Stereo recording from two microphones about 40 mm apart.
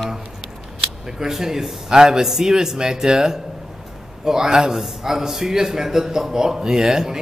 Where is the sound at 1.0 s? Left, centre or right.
Centre.